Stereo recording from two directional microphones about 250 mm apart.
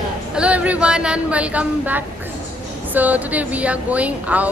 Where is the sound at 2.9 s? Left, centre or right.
Centre.